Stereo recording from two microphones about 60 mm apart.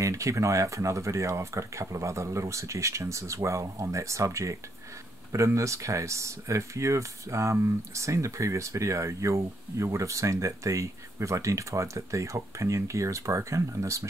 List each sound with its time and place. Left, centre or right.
0.0 s speech: right